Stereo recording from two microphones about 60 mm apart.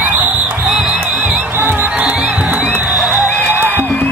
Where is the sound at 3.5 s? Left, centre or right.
Right.